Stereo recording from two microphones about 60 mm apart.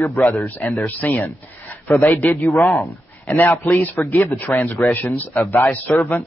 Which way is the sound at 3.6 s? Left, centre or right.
Left.